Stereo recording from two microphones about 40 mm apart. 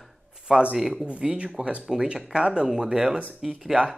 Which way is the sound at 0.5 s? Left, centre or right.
Centre.